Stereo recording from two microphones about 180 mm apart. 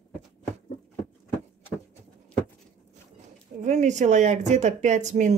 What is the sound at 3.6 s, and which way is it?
Speech, 40° right (ahead or behind).